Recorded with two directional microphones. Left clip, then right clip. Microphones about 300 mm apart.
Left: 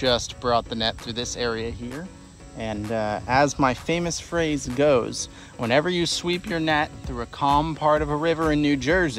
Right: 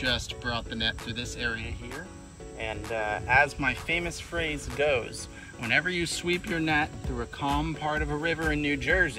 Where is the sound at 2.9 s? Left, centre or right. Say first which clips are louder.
Left 4 dB; left.